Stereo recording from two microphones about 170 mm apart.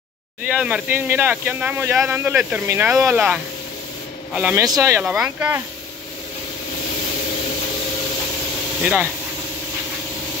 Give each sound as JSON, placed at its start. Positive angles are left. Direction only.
{"t": 0.6, "sound": "speech", "side_deg": -5}
{"t": 4.6, "sound": "speech", "side_deg": -20}
{"t": 5.0, "sound": "speech", "side_deg": -5}
{"t": 8.8, "sound": "speech", "side_deg": -10}